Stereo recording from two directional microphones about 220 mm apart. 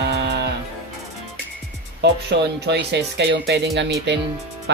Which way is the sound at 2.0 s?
50° right (ahead or behind).